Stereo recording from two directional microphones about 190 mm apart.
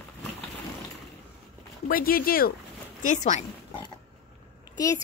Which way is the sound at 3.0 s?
40° left (ahead or behind).